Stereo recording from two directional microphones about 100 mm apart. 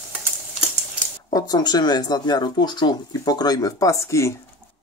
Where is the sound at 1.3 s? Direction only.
40° left (ahead or behind).